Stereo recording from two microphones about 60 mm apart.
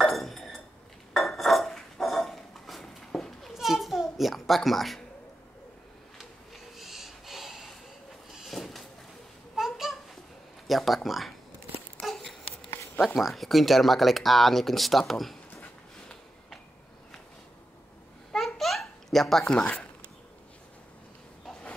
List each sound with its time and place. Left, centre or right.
0.0 s a sound: centre
1.1 s dishes: centre
3.1 s goat: centre
3.5 s children playing: centre
6.1 s a sound: centre
9.6 s babbling: centre
10.7 s speech: centre
13.0 s speech: centre
15.6 s a sound: centre
18.3 s babbling: centre
19.5 s speech: centre